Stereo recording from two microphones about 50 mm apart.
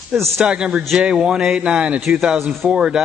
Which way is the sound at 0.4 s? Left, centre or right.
Centre.